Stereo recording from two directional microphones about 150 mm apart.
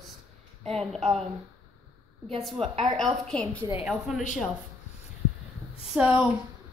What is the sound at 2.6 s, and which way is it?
Speech, 40° right (ahead or behind).